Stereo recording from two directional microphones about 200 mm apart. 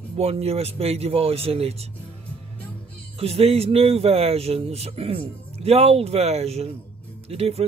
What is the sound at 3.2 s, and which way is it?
Speech, 30° right (ahead or behind).